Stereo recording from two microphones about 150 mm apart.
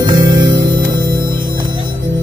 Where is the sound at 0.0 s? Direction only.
30° right (ahead or behind).